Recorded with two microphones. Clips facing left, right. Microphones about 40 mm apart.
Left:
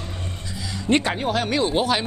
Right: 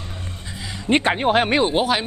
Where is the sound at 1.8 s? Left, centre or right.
Centre.